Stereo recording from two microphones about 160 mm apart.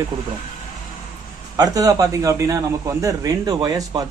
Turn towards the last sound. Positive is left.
turn(degrees=-25)  # may be behind; listen again after turning